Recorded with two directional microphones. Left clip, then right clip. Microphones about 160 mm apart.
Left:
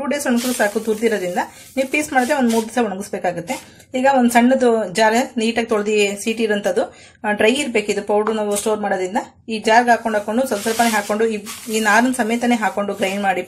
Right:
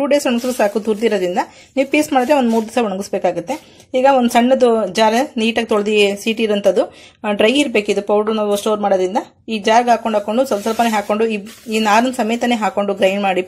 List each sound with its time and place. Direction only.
0.1 s speech: 35° right (ahead or behind)